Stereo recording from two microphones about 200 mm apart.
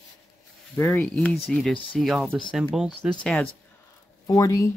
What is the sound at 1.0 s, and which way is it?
Speech, 5° left (ahead or behind).